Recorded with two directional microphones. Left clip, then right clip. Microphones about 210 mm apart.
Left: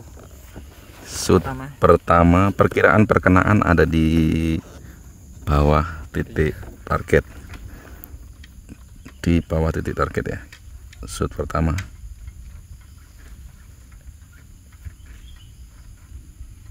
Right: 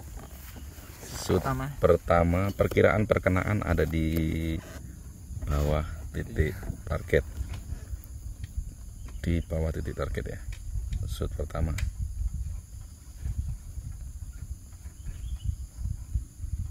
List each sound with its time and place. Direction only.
1.4 s speech: 45° right (ahead or behind)
1.8 s speech: 45° left (ahead or behind)
9.2 s speech: 45° left (ahead or behind)